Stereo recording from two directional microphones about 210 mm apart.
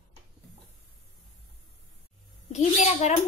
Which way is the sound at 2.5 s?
30° left (ahead or behind).